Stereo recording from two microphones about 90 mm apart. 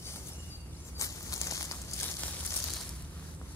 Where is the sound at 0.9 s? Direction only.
35° left (ahead or behind).